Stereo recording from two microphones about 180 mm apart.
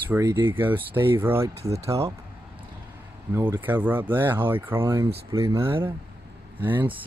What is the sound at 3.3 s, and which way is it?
Speech, 10° right (ahead or behind).